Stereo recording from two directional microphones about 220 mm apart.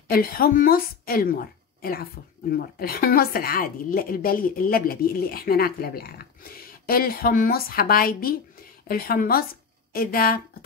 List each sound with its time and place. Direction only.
0.1 s a woman's voice: 45° left (ahead or behind)